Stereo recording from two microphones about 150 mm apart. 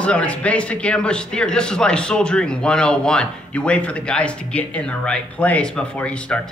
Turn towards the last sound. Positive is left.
turn(degrees=5)  # may be behind; listen again after turning